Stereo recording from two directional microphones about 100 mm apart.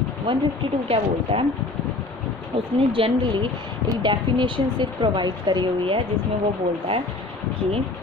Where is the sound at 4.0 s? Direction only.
55° right (ahead or behind).